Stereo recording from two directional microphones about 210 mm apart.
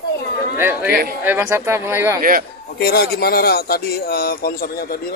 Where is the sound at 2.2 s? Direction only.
40° right (ahead or behind).